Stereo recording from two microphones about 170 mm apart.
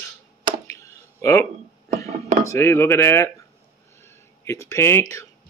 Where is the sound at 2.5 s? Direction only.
15° left (ahead or behind).